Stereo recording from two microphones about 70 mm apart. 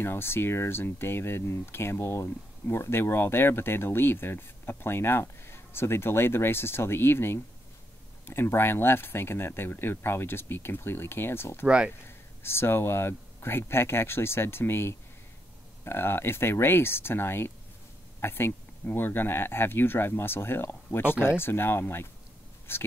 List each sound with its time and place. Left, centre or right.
0.0 s speech: left
11.6 s speech: centre
12.4 s speech: left